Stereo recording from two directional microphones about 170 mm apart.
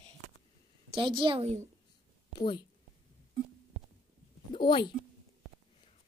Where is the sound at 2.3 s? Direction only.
30° left (ahead or behind).